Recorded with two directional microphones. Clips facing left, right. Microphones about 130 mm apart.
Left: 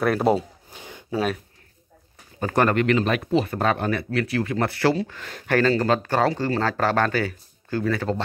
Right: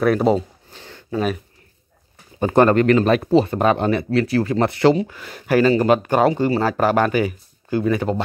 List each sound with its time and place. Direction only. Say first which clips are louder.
0.0 s speech: right 3 dB; centre (ahead or behind)
0.7 s a sound: right 1 dB; 10° left (ahead or behind)
2.4 s speech: right 6 dB; 25° right (ahead or behind)